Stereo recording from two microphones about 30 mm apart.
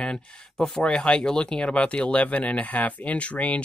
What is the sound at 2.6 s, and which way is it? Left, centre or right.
Speech, left.